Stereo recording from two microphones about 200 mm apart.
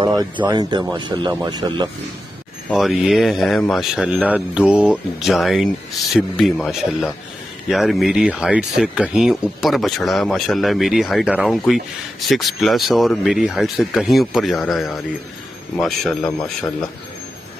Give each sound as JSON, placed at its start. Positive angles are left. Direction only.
{"t": 0.0, "sound": "a sound", "side_deg": -20}
{"t": 0.5, "sound": "speech", "side_deg": -20}
{"t": 2.7, "sound": "speech", "side_deg": 0}